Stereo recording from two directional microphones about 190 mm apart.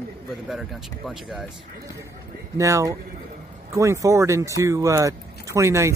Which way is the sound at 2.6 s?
15° right (ahead or behind).